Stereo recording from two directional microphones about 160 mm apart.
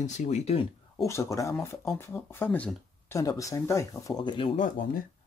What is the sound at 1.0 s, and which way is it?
Speech, 20° left (ahead or behind).